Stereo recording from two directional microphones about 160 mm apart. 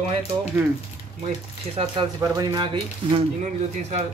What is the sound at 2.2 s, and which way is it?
Speech, 20° right (ahead or behind).